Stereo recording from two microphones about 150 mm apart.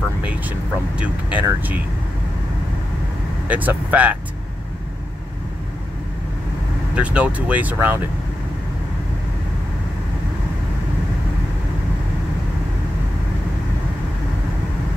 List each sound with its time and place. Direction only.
0.2 s speech: 10° right (ahead or behind)
3.4 s speech: 10° right (ahead or behind)
7.0 s speech: 10° right (ahead or behind)